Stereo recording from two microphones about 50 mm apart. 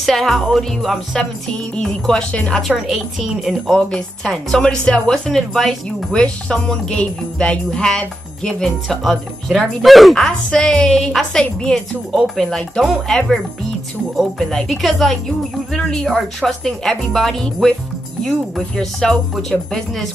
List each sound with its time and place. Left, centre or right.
0.0 s music: centre
0.5 s speech: centre
2.9 s speech: centre
3.9 s speech: centre
6.1 s speech: centre
10.1 s speech: centre
18.8 s speech: centre